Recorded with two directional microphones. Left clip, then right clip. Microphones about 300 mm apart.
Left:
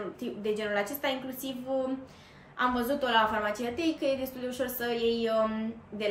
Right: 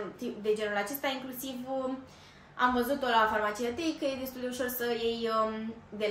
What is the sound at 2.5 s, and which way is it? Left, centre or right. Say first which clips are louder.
A woman's voice: right 1 dB; centre.